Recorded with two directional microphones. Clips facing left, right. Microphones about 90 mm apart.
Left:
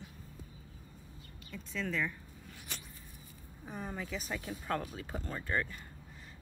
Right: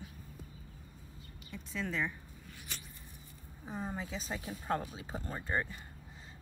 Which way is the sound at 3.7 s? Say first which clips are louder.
Right 1 dB; 25° right (ahead or behind).